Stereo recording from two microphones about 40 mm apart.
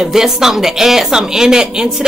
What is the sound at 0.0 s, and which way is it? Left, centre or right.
Speech, centre.